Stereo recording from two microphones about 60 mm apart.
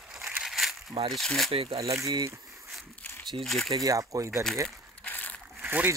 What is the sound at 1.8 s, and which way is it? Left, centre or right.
Speech, right.